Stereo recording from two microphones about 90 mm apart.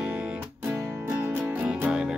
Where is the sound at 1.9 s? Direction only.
10° right (ahead or behind).